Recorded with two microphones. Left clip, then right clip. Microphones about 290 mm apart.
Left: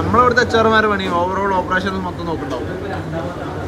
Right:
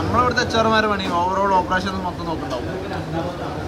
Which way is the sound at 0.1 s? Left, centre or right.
Centre.